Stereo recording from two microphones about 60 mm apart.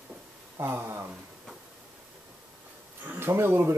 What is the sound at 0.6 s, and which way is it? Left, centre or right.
Speech, right.